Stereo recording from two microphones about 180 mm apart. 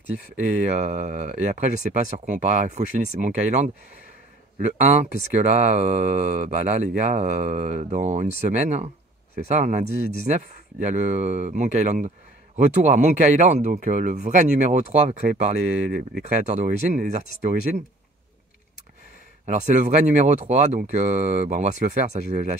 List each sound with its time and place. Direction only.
0.1 s speech: 40° right (ahead or behind)
19.4 s speech: 40° right (ahead or behind)